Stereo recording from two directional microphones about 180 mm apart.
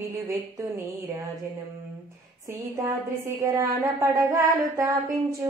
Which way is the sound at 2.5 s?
15° right (ahead or behind).